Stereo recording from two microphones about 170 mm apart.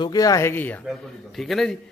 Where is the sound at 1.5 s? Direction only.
Centre (ahead or behind).